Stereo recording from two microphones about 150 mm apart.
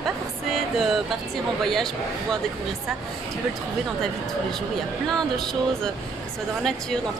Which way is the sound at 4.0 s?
5° left (ahead or behind).